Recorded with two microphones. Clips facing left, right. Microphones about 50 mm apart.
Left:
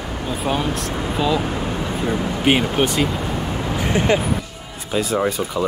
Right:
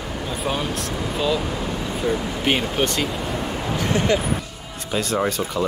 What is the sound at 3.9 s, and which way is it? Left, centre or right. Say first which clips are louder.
Speech: left 3 dB; left.